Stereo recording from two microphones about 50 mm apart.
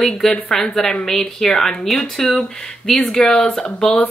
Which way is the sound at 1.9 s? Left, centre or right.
Centre.